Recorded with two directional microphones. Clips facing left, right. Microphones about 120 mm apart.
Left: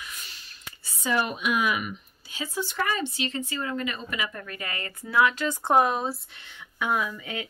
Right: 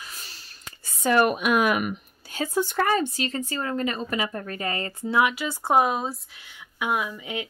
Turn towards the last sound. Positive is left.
turn(degrees=-20)  # may be behind; listen again after turning